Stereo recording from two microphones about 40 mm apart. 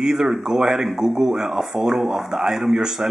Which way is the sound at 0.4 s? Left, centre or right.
Centre.